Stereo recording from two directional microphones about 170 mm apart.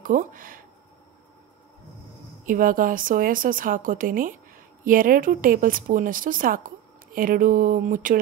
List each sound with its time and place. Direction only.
0.0 s speech: 50° right (ahead or behind)
2.4 s a woman's voice: 55° right (ahead or behind)